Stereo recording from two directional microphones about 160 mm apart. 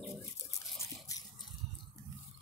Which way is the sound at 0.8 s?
20° left (ahead or behind).